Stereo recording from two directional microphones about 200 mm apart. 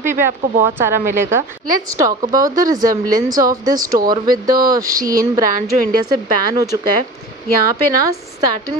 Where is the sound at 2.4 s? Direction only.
45° right (ahead or behind).